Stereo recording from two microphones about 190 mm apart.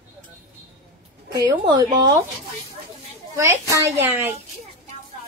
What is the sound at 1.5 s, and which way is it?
Speech, 20° right (ahead or behind).